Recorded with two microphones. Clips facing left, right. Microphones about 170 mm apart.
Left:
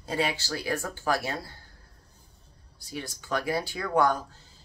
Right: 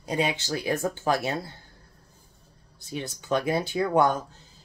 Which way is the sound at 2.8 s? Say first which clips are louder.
Right 3 dB; 20° right (ahead or behind).